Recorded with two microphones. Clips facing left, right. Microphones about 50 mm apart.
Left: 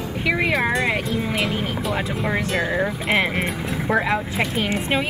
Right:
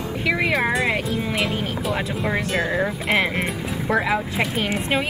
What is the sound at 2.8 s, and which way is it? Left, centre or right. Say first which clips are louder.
Speech: even; centre.